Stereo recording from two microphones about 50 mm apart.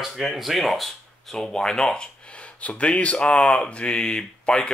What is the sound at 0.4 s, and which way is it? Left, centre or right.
Speech, centre.